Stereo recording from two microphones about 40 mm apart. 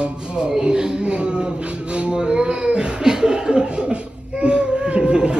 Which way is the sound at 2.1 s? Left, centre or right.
Centre.